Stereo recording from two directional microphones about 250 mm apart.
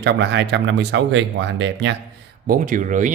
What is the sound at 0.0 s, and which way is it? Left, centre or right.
Speech, right.